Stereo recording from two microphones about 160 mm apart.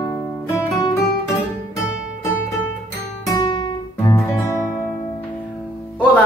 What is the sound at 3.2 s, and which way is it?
Music, 25° left (ahead or behind).